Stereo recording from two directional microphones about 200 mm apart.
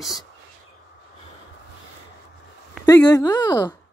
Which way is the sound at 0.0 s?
Centre (ahead or behind).